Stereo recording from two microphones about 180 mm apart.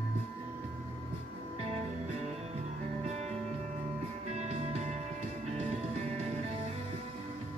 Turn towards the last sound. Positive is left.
turn(degrees=-40)  # may be behind; listen again after turning